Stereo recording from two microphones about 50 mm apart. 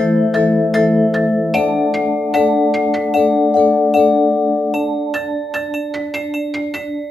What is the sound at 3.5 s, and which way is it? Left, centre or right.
Music, left.